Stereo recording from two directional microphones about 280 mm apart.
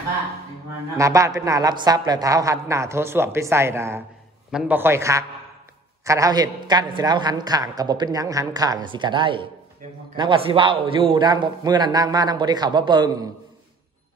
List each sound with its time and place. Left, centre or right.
0.9 s a woman's voice: centre